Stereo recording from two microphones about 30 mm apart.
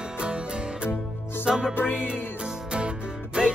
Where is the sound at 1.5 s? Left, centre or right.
Centre.